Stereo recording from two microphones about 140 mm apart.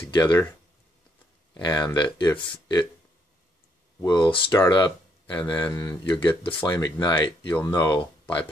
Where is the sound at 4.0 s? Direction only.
30° left (ahead or behind).